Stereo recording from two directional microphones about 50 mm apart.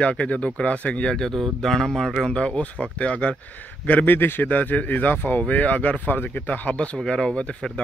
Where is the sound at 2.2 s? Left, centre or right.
Centre.